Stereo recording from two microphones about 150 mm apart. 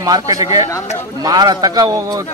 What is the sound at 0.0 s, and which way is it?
Speech, 25° right (ahead or behind).